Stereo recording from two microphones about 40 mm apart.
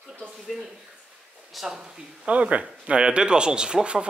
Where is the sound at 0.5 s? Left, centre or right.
Centre.